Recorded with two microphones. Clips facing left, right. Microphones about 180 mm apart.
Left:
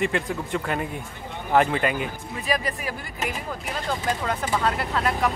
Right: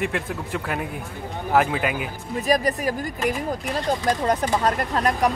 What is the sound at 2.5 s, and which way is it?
Speech, 40° right (ahead or behind).